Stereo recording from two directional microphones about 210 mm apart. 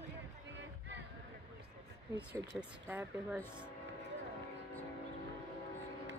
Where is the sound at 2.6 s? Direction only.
10° right (ahead or behind).